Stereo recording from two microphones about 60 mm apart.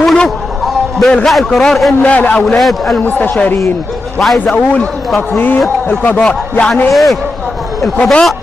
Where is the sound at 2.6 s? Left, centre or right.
Centre.